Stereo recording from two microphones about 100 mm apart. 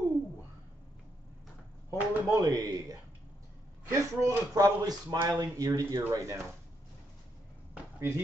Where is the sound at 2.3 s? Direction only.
35° right (ahead or behind).